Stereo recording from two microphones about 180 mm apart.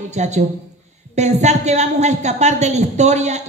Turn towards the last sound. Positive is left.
turn(degrees=-40)  # may be behind; listen again after turning